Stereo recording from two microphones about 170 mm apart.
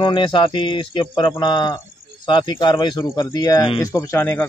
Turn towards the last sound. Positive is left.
turn(degrees=15)  # may be behind; listen again after turning